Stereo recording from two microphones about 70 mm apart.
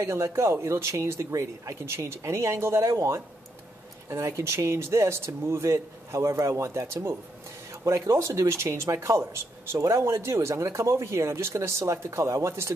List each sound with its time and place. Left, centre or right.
0.0 s speech: right